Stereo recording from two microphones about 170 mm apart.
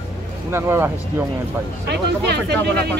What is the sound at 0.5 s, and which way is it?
Speech, 15° right (ahead or behind).